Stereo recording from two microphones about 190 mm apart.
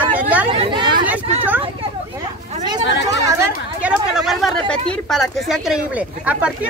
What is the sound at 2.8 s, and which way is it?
Speech, 65° left (ahead or behind).